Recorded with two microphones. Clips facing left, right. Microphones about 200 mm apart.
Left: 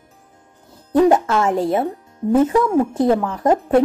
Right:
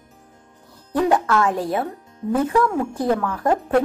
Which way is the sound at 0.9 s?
25° left (ahead or behind).